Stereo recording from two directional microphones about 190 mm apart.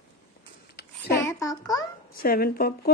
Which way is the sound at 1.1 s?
15° left (ahead or behind).